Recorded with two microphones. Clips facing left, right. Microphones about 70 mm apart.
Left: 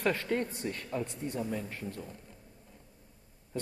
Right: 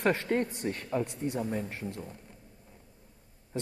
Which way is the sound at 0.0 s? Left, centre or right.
Right.